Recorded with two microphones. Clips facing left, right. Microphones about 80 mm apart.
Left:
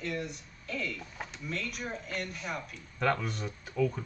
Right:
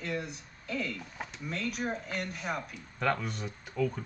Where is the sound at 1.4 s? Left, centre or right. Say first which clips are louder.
Right 3 dB; right.